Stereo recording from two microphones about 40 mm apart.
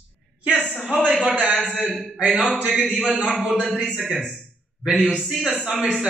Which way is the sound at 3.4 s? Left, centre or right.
Right.